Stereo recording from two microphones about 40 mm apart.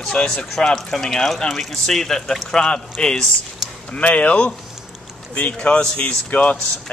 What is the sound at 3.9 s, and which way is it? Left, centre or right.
Speech, left.